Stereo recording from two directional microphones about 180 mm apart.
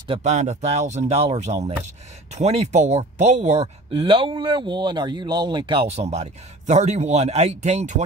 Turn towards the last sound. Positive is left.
turn(degrees=-40)  # may be behind; listen again after turning